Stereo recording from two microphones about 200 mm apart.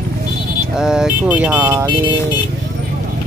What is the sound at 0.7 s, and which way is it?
Speech, 5° right (ahead or behind).